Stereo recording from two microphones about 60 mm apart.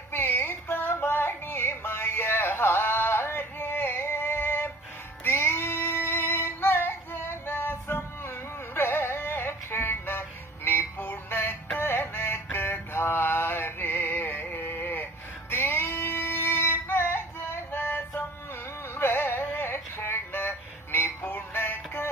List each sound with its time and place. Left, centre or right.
0.1 s music: left
5.2 s female singing: left
8.7 s music: left
11.8 s synthetic singing: left
12.5 s music: left
18.9 s a sound: left